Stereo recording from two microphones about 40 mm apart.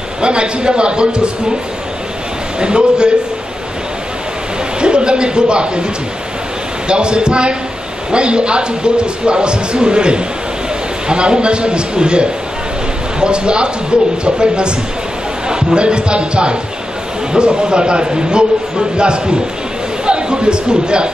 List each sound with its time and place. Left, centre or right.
0.2 s a man's voice: right
2.6 s a man's voice: right
4.7 s speech: right
6.9 s a man's voice: right